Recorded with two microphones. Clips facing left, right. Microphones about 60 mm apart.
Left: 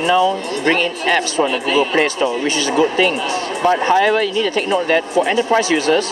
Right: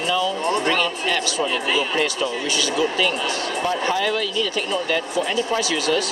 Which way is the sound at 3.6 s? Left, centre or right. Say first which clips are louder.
Left 9 dB; left.